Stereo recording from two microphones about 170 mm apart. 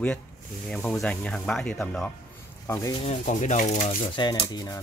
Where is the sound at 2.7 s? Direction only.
20° left (ahead or behind).